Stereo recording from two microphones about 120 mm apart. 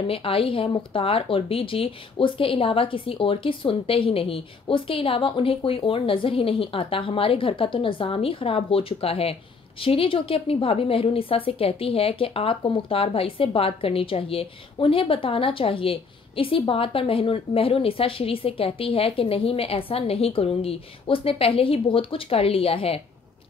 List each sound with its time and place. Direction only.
0.0 s speech: 50° left (ahead or behind)